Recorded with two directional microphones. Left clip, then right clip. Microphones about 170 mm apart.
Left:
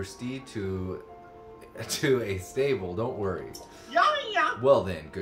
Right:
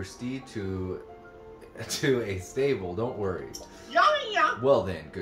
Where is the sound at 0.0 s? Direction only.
25° left (ahead or behind).